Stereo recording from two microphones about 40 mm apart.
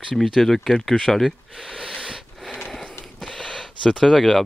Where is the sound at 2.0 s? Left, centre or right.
Centre.